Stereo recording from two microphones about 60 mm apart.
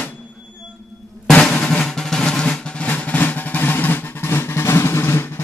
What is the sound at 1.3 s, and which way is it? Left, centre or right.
Drum, centre.